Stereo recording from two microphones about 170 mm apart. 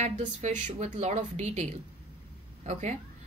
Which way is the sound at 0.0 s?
45° right (ahead or behind).